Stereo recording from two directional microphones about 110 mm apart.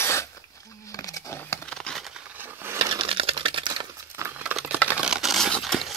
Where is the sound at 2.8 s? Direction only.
55° right (ahead or behind).